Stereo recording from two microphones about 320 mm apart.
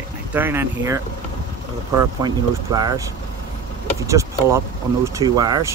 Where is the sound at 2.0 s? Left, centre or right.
Centre.